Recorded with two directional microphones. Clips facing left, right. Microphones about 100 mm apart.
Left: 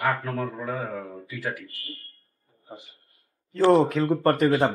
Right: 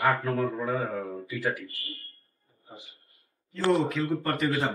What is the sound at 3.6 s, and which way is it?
Speech, 35° left (ahead or behind).